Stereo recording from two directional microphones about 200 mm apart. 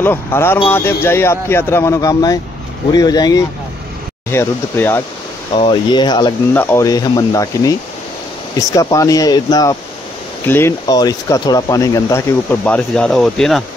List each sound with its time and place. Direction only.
0.0 s speech: 10° left (ahead or behind)
5.5 s speech: 25° left (ahead or behind)
6.5 s speech: 10° left (ahead or behind)